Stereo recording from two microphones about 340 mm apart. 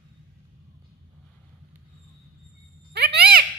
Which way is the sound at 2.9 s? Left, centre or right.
Right.